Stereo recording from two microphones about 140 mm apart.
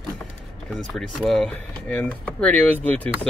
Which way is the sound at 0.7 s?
Centre (ahead or behind).